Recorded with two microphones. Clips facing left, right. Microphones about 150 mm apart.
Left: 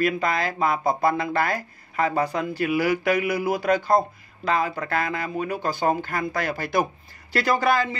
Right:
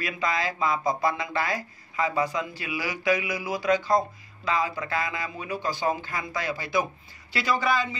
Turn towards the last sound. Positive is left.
turn(degrees=55)  # may be behind; listen again after turning